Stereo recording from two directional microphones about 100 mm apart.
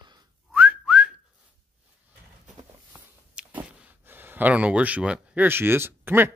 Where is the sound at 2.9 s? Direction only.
15° right (ahead or behind).